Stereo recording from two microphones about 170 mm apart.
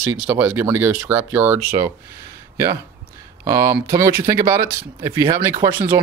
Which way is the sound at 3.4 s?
20° right (ahead or behind).